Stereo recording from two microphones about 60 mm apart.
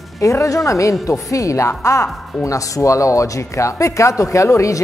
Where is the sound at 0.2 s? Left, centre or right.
Left.